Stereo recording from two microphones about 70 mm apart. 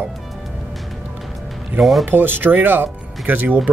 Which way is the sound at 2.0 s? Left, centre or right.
Right.